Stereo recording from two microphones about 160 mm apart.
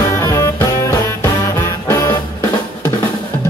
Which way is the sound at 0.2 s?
20° left (ahead or behind).